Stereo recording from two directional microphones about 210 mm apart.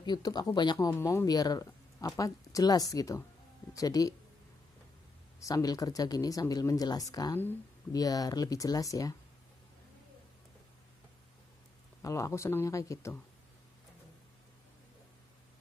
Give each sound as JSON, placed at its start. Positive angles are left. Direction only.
{"t": 0.0, "sound": "speech", "side_deg": 20}
{"t": 5.4, "sound": "speech", "side_deg": 15}
{"t": 12.0, "sound": "speech", "side_deg": 15}